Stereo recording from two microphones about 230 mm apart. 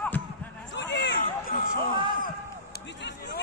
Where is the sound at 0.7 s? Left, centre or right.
Left.